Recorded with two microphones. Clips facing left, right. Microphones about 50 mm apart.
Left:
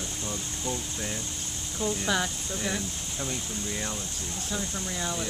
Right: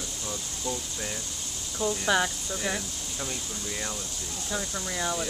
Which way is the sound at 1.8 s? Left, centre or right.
Centre.